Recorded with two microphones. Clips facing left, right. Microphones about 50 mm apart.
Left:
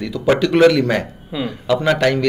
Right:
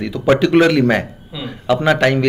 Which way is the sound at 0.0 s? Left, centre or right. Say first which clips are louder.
Right 2 dB; centre.